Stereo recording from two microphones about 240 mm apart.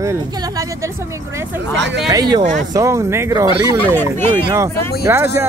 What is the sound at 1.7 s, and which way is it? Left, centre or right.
Speech, right.